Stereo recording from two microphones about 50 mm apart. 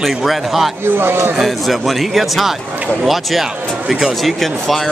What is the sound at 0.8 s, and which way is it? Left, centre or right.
Speech, right.